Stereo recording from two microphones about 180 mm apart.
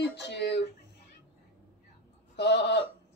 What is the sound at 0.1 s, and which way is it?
Speech, 70° left (ahead or behind).